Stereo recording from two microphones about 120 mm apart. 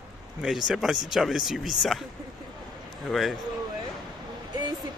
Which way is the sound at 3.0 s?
Centre (ahead or behind).